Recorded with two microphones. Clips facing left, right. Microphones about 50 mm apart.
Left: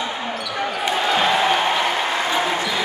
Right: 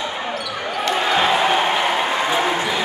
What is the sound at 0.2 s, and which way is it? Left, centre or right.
Basketball bounce, centre.